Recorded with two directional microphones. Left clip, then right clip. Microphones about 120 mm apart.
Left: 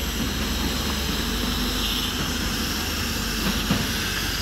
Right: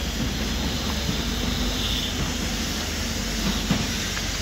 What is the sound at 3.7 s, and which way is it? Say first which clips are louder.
Train: left 1 dB; 30° left (ahead or behind).